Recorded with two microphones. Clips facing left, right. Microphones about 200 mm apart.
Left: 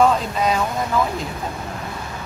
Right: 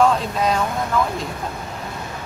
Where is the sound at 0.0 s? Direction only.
5° left (ahead or behind).